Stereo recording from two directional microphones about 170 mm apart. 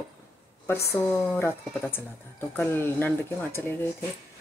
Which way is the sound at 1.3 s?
10° left (ahead or behind).